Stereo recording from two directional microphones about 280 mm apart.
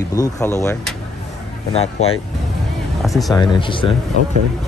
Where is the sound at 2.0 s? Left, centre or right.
Left.